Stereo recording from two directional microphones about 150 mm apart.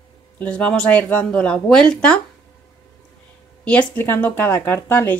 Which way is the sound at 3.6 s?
10° left (ahead or behind).